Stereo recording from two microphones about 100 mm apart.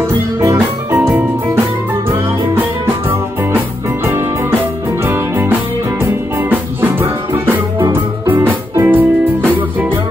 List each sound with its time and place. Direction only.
0.0 s music: 25° right (ahead or behind)
2.0 s music: 25° right (ahead or behind)
4.0 s music: 25° right (ahead or behind)